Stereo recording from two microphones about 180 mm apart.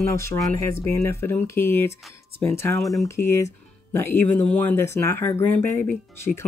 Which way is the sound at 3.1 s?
15° left (ahead or behind).